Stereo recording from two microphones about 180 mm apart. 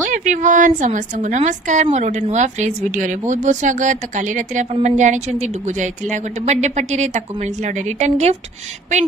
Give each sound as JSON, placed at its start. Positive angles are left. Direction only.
{"t": 0.0, "sound": "a woman's voice", "side_deg": -45}